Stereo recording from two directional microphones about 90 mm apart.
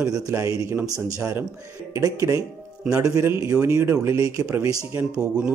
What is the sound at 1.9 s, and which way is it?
A man's voice, 35° right (ahead or behind).